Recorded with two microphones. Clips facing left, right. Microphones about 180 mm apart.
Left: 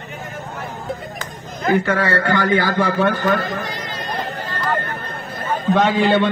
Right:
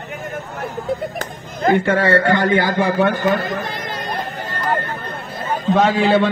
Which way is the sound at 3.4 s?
55° right (ahead or behind).